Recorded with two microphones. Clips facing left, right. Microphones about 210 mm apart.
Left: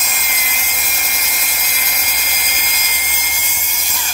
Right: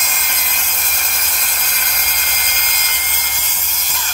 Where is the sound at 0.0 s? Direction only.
10° left (ahead or behind).